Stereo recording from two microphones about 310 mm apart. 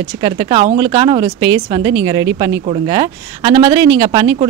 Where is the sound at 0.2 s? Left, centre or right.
Centre.